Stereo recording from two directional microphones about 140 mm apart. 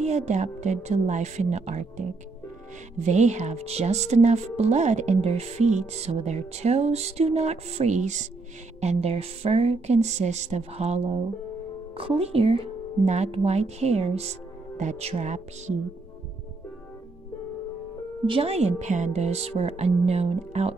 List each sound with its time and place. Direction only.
0.0 s speech: 55° right (ahead or behind)
3.0 s music: 55° right (ahead or behind)
14.8 s speech: 55° right (ahead or behind)
18.2 s music: 40° right (ahead or behind)